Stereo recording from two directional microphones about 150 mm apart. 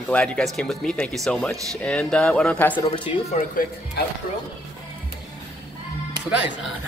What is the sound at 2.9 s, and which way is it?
Speech, 40° left (ahead or behind).